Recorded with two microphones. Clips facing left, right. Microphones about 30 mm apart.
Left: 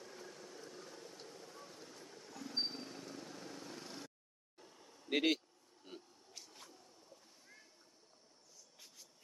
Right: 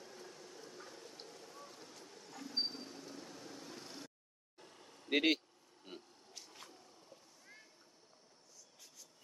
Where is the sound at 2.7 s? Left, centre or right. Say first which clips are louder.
Left 1 dB; left.